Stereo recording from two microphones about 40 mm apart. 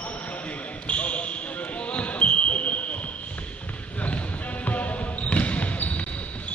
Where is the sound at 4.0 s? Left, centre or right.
Left.